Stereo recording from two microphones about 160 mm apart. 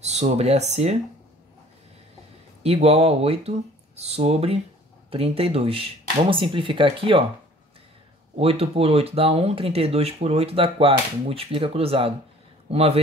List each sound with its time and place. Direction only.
0.0 s speech: 45° right (ahead or behind)
2.6 s speech: 40° right (ahead or behind)
8.4 s a man's voice: 40° right (ahead or behind)